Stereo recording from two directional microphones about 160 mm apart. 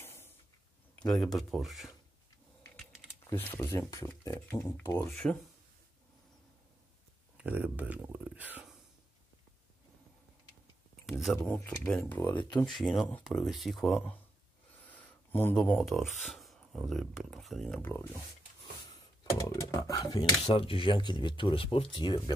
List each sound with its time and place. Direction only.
0.0 s a sound: 15° left (ahead or behind)
1.0 s speech: centre (ahead or behind)
3.3 s speech: 15° left (ahead or behind)
5.2 s speech: 5° left (ahead or behind)
7.3 s speech: 10° right (ahead or behind)
11.1 s speech: centre (ahead or behind)
12.7 s speech: centre (ahead or behind)
14.9 s speech: 10° left (ahead or behind)
20.4 s speech: 35° left (ahead or behind)